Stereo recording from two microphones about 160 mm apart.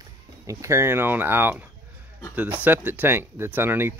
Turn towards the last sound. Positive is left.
turn(degrees=-15)  # may be behind; listen again after turning